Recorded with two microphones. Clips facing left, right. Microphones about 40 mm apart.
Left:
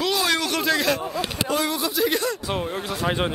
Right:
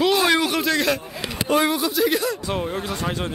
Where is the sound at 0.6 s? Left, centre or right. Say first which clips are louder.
Right 1 dB; centre.